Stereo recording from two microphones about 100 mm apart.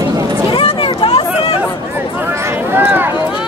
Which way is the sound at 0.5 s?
65° left (ahead or behind).